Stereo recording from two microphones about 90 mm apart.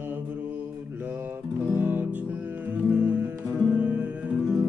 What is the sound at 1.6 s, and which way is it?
Music, 20° right (ahead or behind).